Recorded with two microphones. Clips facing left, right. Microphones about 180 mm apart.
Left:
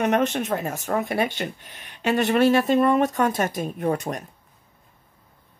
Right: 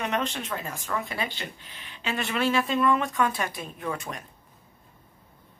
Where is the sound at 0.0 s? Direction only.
50° left (ahead or behind).